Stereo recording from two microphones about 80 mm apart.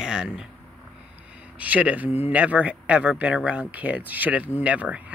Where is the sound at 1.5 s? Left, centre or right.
Centre.